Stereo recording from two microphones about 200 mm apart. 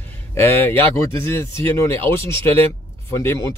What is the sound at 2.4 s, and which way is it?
Speech, 30° right (ahead or behind).